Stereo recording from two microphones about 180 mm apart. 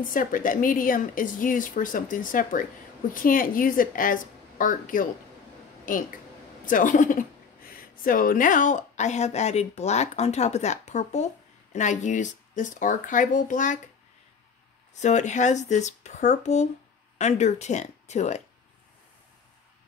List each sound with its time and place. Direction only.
0.1 s speech: 50° left (ahead or behind)
15.0 s speech: 40° left (ahead or behind)